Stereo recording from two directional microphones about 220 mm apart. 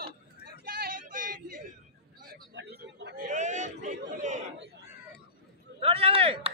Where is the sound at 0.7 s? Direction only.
40° right (ahead or behind).